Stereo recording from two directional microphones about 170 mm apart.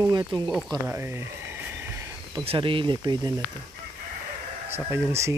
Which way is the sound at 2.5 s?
30° right (ahead or behind).